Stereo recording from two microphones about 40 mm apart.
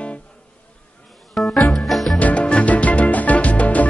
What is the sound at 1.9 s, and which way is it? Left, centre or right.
Music, centre.